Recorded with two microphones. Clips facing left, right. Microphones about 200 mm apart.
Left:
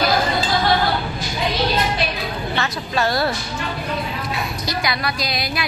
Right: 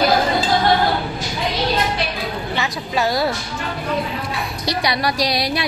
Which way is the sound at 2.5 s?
15° right (ahead or behind).